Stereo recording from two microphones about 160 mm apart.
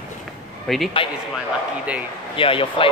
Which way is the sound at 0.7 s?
Centre (ahead or behind).